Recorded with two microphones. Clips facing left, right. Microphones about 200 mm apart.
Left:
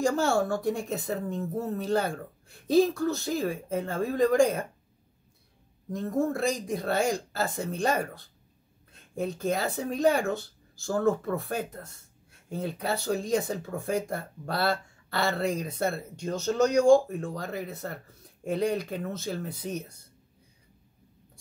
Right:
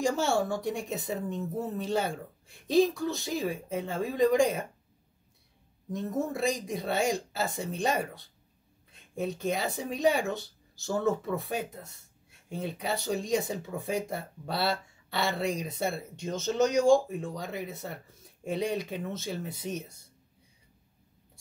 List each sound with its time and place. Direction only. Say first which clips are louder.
0.1 s speech: left 2 dB; centre (ahead or behind)
5.9 s speech: left 4 dB; centre (ahead or behind)